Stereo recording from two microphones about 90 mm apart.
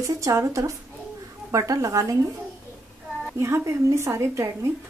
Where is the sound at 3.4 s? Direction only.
35° right (ahead or behind).